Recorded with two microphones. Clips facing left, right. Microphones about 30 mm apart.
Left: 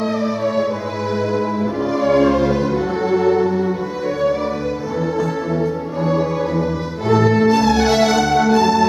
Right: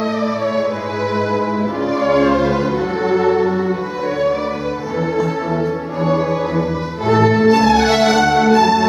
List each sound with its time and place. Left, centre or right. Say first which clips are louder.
2.0 s music: even; centre
5.6 s music: right 1 dB; centre